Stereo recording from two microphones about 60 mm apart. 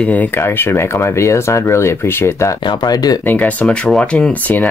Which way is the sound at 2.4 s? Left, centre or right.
Left.